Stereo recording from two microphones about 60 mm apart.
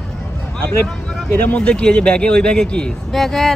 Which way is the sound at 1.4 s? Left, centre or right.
Centre.